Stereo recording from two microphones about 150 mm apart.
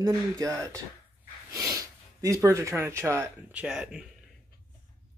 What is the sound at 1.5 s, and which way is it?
Speech, 20° right (ahead or behind).